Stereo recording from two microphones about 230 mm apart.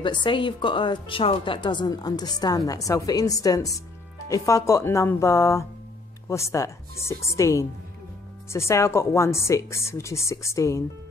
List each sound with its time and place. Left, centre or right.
0.0 s a woman's voice: left